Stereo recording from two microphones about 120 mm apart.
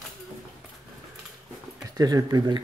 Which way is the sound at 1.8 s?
30° right (ahead or behind).